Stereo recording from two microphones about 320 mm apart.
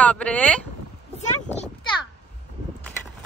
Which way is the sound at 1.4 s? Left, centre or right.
Centre.